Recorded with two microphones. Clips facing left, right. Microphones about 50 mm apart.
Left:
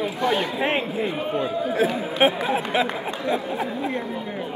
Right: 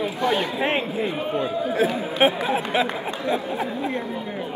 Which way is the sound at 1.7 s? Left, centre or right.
Centre.